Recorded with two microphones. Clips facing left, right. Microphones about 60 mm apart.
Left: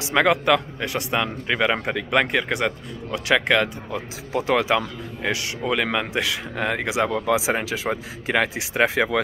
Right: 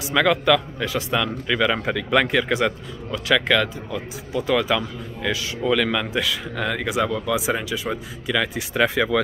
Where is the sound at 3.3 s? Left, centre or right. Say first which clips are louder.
Even; left.